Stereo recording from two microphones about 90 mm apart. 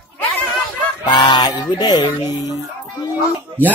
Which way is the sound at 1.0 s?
55° left (ahead or behind).